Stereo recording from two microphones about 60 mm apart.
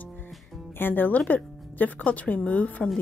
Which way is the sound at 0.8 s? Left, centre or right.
Left.